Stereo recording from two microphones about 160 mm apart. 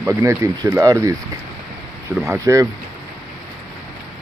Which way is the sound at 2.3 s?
20° right (ahead or behind).